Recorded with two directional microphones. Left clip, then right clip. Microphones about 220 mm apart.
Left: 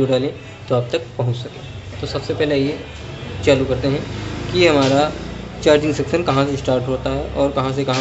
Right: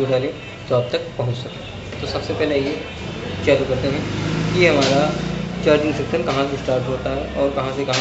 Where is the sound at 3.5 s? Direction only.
50° left (ahead or behind).